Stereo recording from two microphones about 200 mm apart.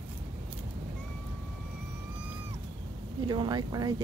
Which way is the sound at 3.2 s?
20° right (ahead or behind).